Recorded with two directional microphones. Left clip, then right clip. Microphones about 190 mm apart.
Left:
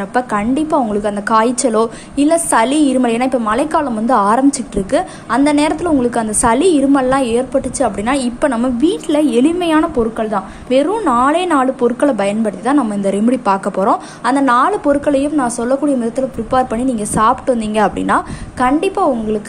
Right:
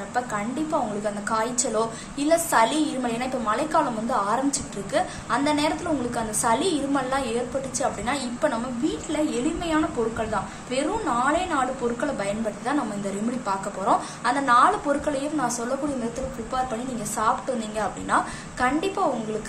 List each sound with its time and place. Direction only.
0.1 s a woman's voice: 45° left (ahead or behind)